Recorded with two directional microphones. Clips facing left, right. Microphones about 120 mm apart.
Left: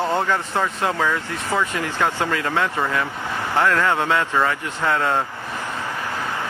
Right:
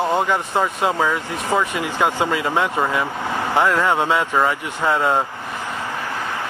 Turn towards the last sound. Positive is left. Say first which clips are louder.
# right 2 dB
turn(degrees=-15)  # may be behind; listen again after turning